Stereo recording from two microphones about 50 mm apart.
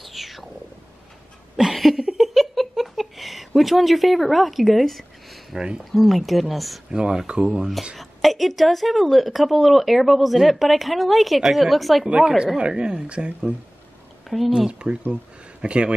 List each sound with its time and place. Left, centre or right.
0.0 s whale vocalization: centre
1.6 s a sound: centre
5.5 s speech: centre
5.9 s a woman's voice: centre
6.9 s speech: centre
8.0 s a woman's voice: centre
12.1 s speech: centre
14.3 s speech: centre
14.7 s speech: right